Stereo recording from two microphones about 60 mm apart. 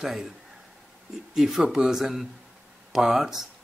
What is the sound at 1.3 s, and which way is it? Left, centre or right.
Speech, centre.